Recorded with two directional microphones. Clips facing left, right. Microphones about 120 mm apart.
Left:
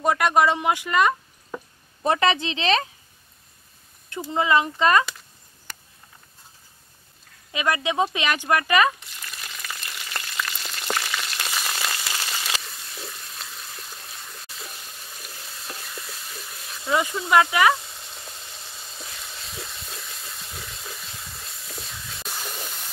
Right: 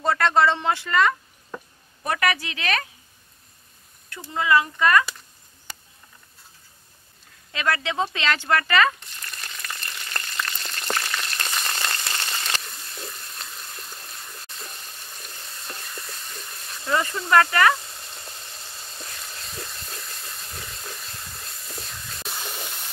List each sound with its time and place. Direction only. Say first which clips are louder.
0.0 s speech: even; 15° left (ahead or behind)
1.5 s a sound: left 2 dB; 5° left (ahead or behind)
2.0 s a woman's voice: left 4 dB; 25° left (ahead or behind)
4.3 s a woman's voice: even; 20° left (ahead or behind)
7.5 s speech: left 2 dB; 15° left (ahead or behind)
9.0 s frying: even; 5° left (ahead or behind)